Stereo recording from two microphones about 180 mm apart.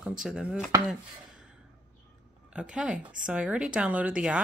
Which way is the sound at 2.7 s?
5° right (ahead or behind).